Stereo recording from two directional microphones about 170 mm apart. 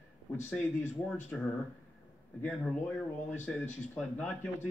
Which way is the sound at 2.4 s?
5° left (ahead or behind).